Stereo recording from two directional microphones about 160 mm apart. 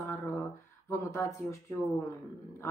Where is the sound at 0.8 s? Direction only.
15° left (ahead or behind).